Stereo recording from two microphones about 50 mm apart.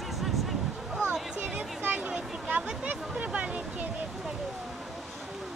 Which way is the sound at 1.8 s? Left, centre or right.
Right.